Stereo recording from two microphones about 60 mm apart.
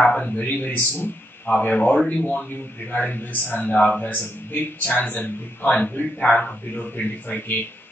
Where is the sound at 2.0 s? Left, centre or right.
Centre.